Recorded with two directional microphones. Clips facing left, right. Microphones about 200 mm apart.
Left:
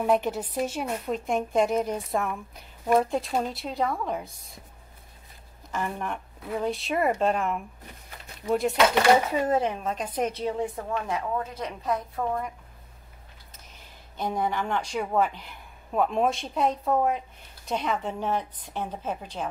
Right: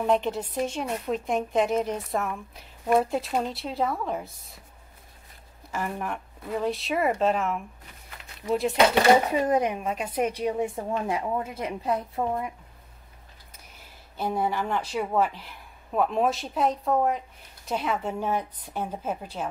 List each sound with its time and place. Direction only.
0.0 s a woman's voice: 5° left (ahead or behind)
5.7 s a woman's voice: 5° right (ahead or behind)
8.9 s speech: 20° right (ahead or behind)
10.9 s a woman's voice: 30° right (ahead or behind)
11.1 s a woman's voice: 20° right (ahead or behind)
14.1 s a woman's voice: 5° right (ahead or behind)